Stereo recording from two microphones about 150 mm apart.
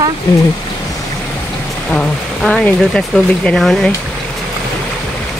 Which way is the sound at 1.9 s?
5° left (ahead or behind).